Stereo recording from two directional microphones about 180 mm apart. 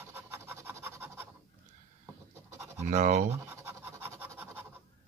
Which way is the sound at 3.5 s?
10° right (ahead or behind).